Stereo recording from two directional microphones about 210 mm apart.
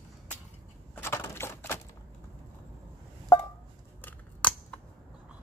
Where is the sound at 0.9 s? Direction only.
10° left (ahead or behind).